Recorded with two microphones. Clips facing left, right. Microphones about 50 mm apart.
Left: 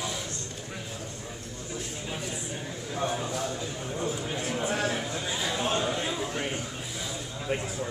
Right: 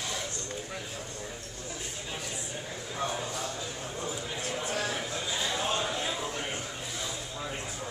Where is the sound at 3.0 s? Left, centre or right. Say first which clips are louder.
Left 3 dB; centre.